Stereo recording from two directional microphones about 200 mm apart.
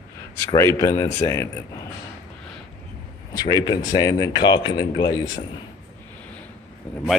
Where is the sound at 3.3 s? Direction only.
20° left (ahead or behind).